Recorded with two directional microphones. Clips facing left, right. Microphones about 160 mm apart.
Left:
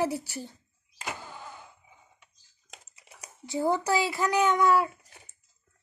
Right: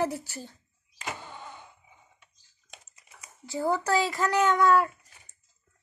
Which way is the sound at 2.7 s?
75° left (ahead or behind).